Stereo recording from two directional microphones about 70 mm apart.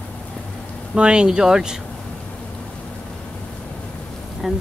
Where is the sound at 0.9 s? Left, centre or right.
Centre.